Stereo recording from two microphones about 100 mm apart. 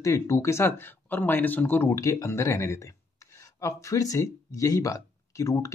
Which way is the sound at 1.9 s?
35° left (ahead or behind).